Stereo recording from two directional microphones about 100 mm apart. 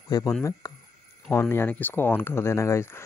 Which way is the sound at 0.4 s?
35° left (ahead or behind).